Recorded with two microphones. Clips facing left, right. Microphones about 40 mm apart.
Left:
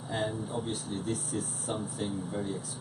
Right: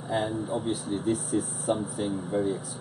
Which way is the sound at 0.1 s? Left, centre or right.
Centre.